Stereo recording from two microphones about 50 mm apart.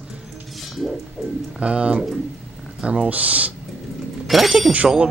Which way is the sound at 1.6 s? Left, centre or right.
Right.